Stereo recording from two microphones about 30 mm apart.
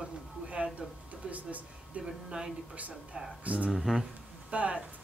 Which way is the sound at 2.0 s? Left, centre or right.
Right.